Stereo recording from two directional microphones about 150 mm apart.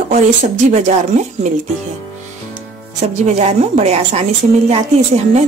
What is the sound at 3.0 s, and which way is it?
A woman's voice, 50° right (ahead or behind).